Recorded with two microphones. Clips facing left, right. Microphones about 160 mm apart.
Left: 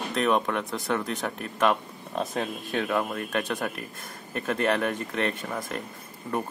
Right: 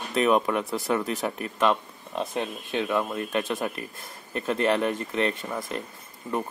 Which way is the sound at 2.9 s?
15° right (ahead or behind).